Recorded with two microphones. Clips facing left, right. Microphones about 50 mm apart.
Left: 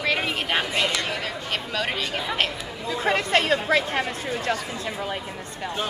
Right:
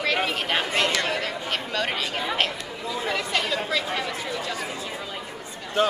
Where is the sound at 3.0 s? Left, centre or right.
Left.